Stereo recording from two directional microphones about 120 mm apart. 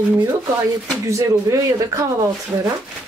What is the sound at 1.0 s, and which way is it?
Speech, 25° right (ahead or behind).